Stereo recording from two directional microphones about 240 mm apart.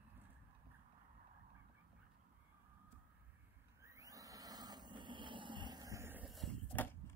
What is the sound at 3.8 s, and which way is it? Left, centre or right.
Vehicle, centre.